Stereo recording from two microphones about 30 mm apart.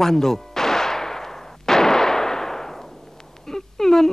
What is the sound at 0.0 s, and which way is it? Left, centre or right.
Artillery fire, centre.